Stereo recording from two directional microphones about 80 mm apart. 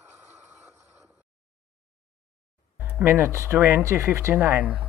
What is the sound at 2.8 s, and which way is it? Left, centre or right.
Speech, right.